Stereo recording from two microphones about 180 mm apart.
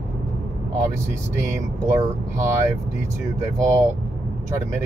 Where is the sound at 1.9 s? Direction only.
15° right (ahead or behind).